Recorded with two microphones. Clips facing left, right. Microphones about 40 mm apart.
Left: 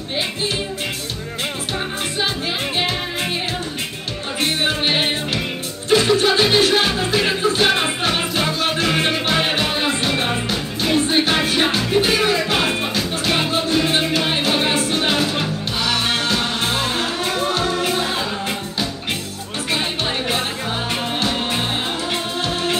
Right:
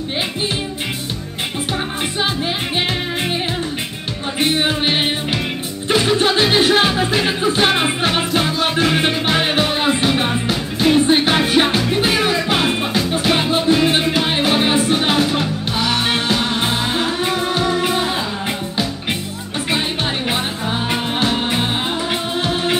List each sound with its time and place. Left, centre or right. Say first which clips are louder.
5.9 s music: even; centre
11.6 s music: right 1 dB; centre
20.9 s music: right 3 dB; centre